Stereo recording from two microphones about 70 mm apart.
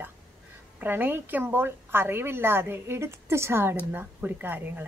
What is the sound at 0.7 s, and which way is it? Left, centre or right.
A woman's voice, right.